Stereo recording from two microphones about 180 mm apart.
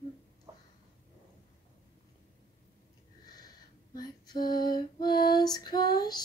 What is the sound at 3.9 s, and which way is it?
Female singing, 25° left (ahead or behind).